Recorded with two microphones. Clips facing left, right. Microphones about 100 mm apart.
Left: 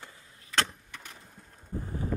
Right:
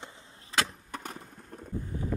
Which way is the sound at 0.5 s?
30° right (ahead or behind).